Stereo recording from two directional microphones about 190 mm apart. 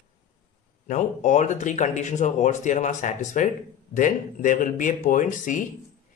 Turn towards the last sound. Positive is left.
turn(degrees=45)  # may be behind; listen again after turning